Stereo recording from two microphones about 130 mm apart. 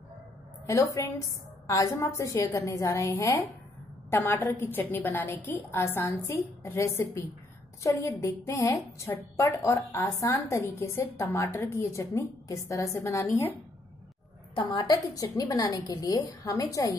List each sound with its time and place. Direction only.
0.7 s a woman's voice: 25° left (ahead or behind)
14.5 s a woman's voice: 35° left (ahead or behind)